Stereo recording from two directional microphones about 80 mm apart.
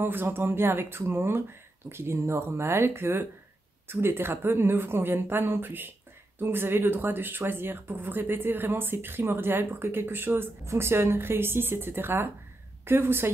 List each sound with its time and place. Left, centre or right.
0.0 s speech: right